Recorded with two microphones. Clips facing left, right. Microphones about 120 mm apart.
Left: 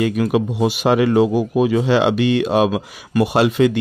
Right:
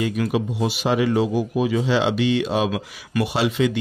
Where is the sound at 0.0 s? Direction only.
55° left (ahead or behind).